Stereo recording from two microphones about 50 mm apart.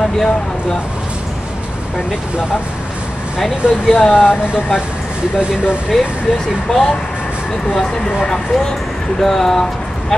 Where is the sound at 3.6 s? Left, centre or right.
Right.